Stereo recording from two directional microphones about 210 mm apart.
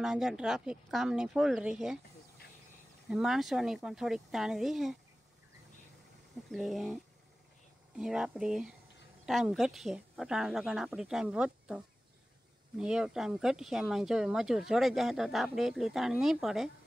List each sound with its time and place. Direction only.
0.0 s speech: 5° right (ahead or behind)
3.1 s speech: centre (ahead or behind)
6.5 s speech: centre (ahead or behind)
8.0 s speech: 5° right (ahead or behind)